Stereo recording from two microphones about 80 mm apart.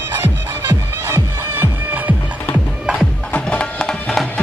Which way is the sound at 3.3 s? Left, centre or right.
Centre.